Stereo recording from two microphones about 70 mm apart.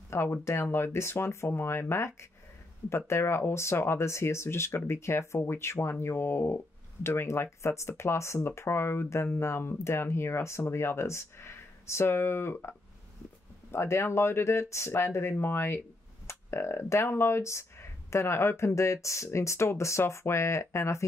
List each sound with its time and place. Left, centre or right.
0.1 s speech: left